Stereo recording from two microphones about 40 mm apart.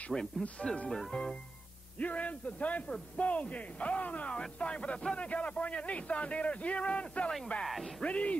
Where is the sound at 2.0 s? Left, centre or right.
Left.